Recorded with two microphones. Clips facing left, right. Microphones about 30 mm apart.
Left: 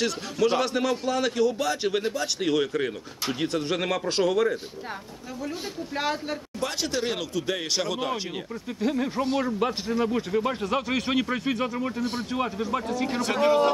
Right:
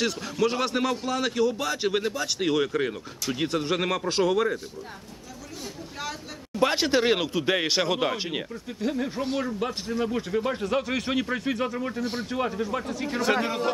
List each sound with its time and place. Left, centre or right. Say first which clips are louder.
0.5 s a man's voice: left 3 dB; centre
6.6 s speech: right 7 dB; right
8.6 s a man's voice: left 4 dB; centre
13.2 s a man's voice: left 2 dB; centre